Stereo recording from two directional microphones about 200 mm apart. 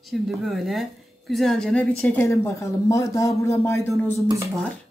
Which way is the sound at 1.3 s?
Centre (ahead or behind).